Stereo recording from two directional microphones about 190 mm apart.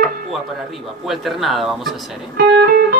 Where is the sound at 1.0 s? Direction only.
Centre (ahead or behind).